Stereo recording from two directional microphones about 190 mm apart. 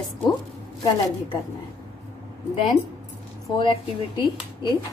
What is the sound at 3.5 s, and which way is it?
Speech, 25° left (ahead or behind).